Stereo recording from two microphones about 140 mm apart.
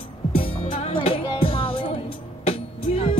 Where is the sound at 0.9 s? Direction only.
40° left (ahead or behind).